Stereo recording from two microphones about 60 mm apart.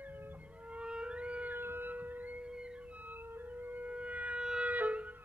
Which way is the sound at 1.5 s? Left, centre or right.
Right.